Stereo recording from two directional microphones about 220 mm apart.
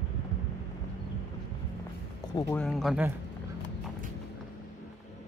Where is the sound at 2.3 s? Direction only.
15° left (ahead or behind).